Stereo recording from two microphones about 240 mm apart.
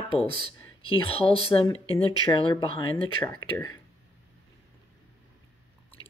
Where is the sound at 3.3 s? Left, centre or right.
Centre.